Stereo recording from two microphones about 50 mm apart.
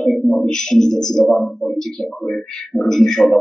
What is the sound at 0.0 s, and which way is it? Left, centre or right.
Speech, centre.